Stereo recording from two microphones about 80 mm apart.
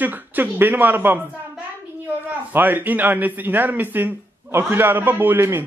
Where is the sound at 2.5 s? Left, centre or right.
Right.